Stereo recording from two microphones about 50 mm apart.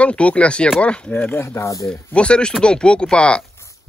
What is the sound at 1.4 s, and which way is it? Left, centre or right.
Speech, left.